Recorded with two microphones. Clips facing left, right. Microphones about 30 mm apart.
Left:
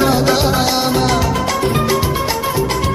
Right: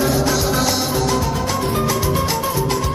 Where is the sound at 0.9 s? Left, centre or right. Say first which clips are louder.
Left 4 dB; left.